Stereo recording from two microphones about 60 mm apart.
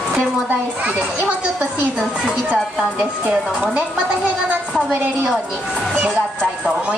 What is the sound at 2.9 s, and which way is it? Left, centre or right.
Speech, centre.